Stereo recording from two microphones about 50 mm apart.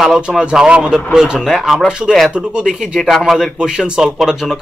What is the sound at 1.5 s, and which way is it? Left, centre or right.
Speech, centre.